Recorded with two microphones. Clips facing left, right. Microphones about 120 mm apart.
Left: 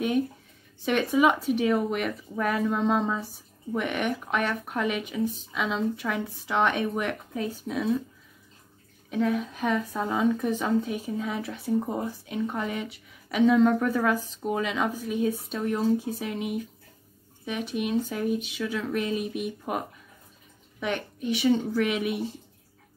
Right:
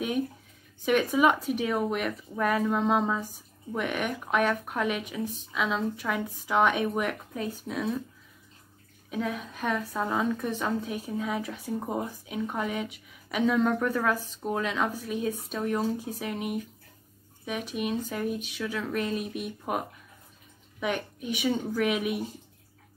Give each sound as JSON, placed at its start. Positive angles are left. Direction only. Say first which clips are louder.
{"t": 0.8, "sound": "speech", "louder": "left 1 dB", "side_deg": 0}
{"t": 9.1, "sound": "speech", "louder": "left 6 dB", "side_deg": 0}
{"t": 20.8, "sound": "speech", "louder": "left 1 dB", "side_deg": -5}